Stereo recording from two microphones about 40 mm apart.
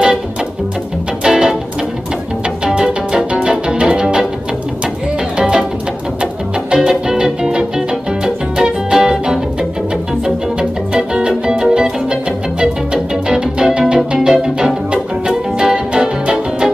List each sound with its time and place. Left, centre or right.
1.2 s music: centre
6.7 s music: centre